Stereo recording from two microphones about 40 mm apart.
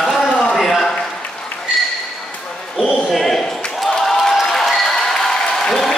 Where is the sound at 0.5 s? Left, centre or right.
Centre.